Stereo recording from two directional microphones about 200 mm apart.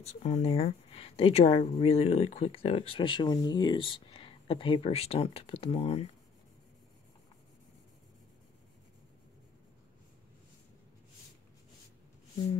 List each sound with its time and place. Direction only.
0.0 s speech: 35° left (ahead or behind)